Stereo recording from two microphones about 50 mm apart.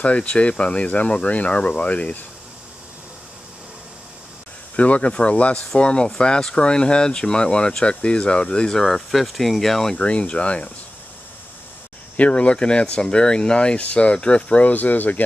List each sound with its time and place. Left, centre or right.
0.0 s speech: left
4.7 s speech: left
8.7 s speech: centre
9.9 s speech: left
12.2 s speech: left